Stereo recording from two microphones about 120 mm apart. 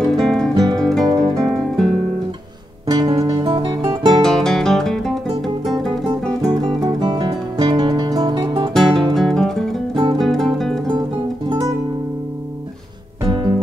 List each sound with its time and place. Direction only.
0.0 s music: centre (ahead or behind)
1.2 s guitar: 5° left (ahead or behind)
2.9 s guitar: 35° right (ahead or behind)
3.4 s music: 40° right (ahead or behind)
4.2 s guitar: 5° left (ahead or behind)
6.4 s music: 35° right (ahead or behind)
8.7 s music: centre (ahead or behind)
10.9 s music: 35° right (ahead or behind)